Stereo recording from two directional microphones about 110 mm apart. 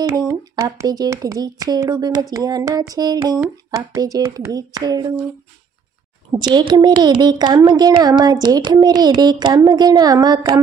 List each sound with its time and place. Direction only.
0.0 s speech: 30° right (ahead or behind)
6.3 s speech: 45° right (ahead or behind)